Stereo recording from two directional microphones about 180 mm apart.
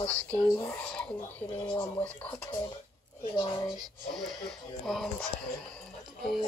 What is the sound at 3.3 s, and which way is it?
Speech, 25° left (ahead or behind).